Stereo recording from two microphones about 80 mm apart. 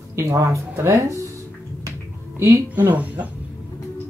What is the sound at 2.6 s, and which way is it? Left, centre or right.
Speech, right.